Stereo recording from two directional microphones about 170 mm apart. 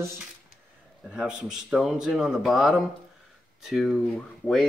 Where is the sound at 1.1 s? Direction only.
5° right (ahead or behind).